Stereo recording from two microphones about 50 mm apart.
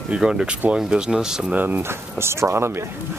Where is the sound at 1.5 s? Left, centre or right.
Right.